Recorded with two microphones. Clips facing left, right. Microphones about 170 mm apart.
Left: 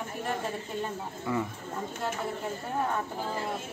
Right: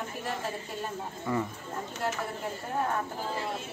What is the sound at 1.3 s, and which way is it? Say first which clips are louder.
Speech: even; 5° left (ahead or behind).